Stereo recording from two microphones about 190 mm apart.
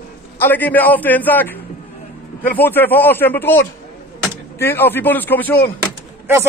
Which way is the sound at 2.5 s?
10° left (ahead or behind).